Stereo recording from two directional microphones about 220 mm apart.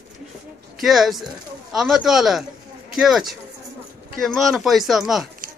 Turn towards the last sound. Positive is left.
turn(degrees=0)  # may be behind; listen again after turning